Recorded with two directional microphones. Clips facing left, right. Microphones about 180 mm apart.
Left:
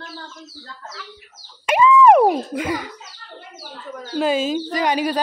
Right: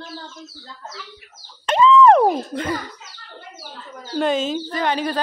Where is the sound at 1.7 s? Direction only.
10° left (ahead or behind).